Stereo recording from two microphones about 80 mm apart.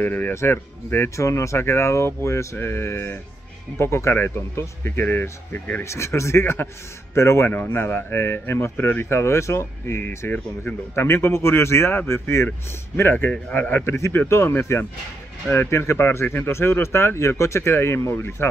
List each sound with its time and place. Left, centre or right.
0.0 s speech: left
5.9 s speech: left